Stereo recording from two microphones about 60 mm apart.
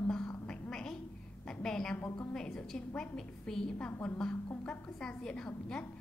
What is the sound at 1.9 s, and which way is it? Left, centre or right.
Speech, left.